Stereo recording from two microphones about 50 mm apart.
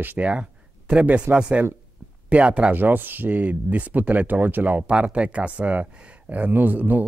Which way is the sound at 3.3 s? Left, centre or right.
Right.